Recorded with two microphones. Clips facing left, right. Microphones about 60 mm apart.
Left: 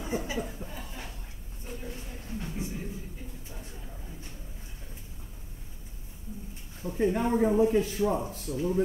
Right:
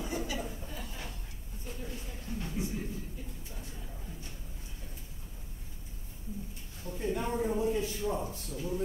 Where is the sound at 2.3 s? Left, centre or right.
Left.